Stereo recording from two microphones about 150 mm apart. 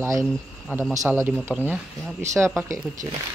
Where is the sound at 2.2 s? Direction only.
20° right (ahead or behind).